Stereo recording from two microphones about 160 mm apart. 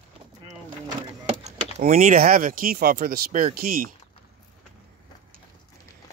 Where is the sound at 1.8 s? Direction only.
55° right (ahead or behind).